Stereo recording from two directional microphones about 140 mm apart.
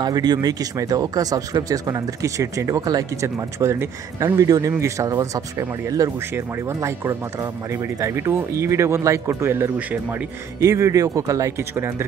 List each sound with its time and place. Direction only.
0.0 s speech: 30° right (ahead or behind)